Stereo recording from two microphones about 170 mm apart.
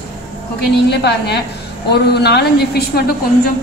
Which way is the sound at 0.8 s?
75° left (ahead or behind).